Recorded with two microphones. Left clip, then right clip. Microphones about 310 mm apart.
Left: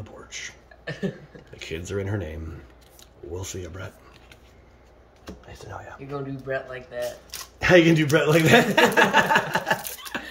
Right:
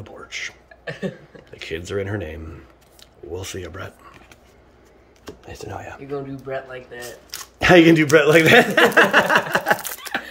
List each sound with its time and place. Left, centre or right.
0.0 s a sound: centre
3.3 s speech: centre
5.4 s speech: right
6.1 s speech: centre
7.5 s speech: centre